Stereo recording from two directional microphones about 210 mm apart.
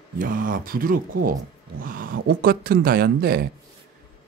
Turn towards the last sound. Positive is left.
turn(degrees=-45)  # may be behind; listen again after turning